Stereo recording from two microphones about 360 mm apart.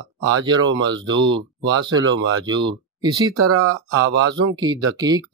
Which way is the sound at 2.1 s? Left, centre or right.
Right.